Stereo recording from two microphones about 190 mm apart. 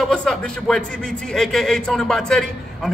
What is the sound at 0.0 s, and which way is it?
A man's voice, 5° left (ahead or behind).